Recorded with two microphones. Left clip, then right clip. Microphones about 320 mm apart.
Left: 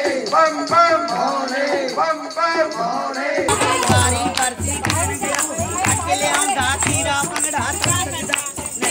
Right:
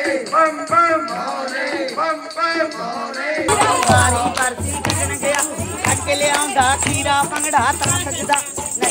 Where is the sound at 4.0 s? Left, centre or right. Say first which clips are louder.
Right 2 dB; centre.